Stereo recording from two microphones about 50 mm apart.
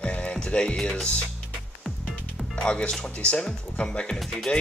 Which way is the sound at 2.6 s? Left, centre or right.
Centre.